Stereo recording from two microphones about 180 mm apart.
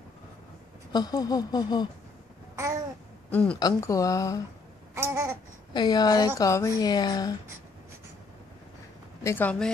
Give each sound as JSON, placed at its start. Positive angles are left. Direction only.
{"t": 0.9, "sound": "speech", "side_deg": 20}
{"t": 2.5, "sound": "babbling", "side_deg": -15}
{"t": 3.3, "sound": "a woman's voice", "side_deg": 10}
{"t": 3.5, "sound": "speech", "side_deg": 20}
{"t": 4.9, "sound": "babbling", "side_deg": -15}
{"t": 5.7, "sound": "speech", "side_deg": 25}
{"t": 9.2, "sound": "speech", "side_deg": 10}